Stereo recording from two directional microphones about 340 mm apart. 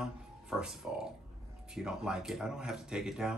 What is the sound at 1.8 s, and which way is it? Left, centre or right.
Speech, centre.